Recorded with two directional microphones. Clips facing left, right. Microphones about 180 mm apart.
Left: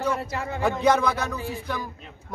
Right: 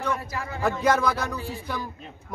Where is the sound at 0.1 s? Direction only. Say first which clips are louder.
Left 2 dB; 25° left (ahead or behind).